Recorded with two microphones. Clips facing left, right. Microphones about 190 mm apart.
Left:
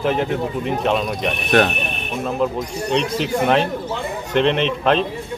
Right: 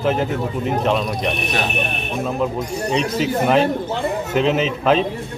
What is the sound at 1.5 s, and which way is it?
Speech, 60° left (ahead or behind).